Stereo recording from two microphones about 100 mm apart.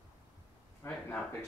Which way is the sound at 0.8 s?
30° left (ahead or behind).